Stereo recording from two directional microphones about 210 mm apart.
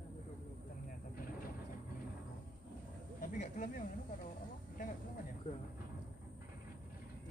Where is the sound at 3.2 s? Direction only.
40° left (ahead or behind).